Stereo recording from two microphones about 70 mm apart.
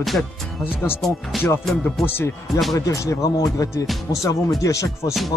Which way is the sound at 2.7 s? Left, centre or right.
Left.